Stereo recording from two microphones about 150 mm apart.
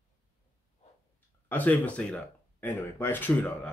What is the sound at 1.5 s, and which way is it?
Speech, 10° left (ahead or behind).